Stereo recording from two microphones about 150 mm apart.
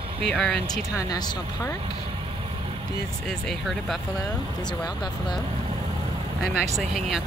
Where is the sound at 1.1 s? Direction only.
25° left (ahead or behind).